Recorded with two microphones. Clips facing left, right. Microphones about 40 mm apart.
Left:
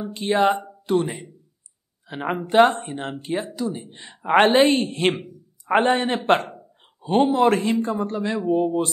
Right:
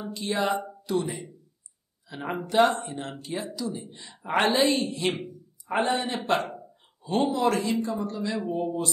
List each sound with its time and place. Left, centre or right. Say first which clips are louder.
0.1 s speech: left 7 dB; left
8.5 s speech: left 7 dB; left